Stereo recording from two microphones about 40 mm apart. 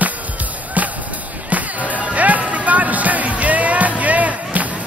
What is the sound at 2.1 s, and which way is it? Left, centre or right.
Music, right.